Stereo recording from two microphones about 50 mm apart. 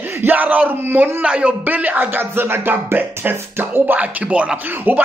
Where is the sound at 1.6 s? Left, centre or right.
Right.